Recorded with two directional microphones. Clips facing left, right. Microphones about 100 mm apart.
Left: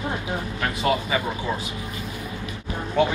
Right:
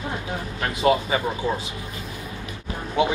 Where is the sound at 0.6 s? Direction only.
25° right (ahead or behind).